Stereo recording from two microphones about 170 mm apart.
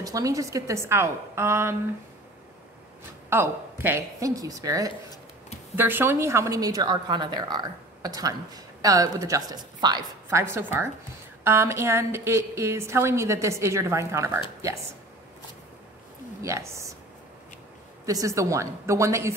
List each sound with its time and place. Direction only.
0.0 s a woman's voice: 20° right (ahead or behind)
3.3 s a woman's voice: 15° right (ahead or behind)
10.4 s a woman's voice: 15° right (ahead or behind)
16.4 s a woman's voice: 15° right (ahead or behind)
18.0 s a woman's voice: 20° right (ahead or behind)